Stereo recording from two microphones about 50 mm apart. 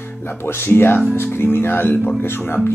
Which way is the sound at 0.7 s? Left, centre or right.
Left.